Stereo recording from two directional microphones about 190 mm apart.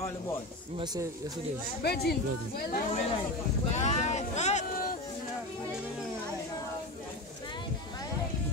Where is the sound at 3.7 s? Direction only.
35° left (ahead or behind).